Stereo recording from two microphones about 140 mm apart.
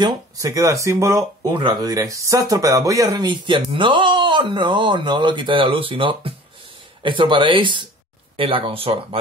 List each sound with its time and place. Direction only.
0.0 s speech: 30° right (ahead or behind)